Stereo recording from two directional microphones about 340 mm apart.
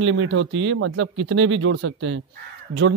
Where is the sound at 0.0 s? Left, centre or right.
Right.